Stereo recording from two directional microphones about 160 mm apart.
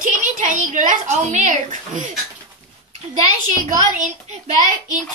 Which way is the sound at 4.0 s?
50° right (ahead or behind).